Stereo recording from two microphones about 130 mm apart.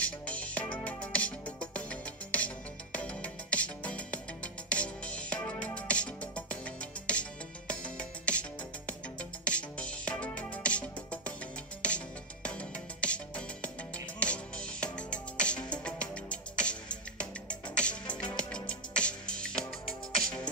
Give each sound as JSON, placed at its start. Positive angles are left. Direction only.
{"t": 0.0, "sound": "music", "side_deg": 10}
{"t": 12.4, "sound": "music", "side_deg": 10}